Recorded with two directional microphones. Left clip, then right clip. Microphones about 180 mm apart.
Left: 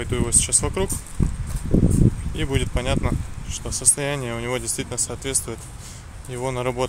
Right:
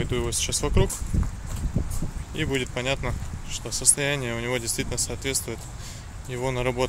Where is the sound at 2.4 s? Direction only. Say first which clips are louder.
Right 1 dB; 10° left (ahead or behind).